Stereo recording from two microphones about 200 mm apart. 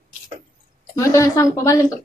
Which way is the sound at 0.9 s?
15° left (ahead or behind).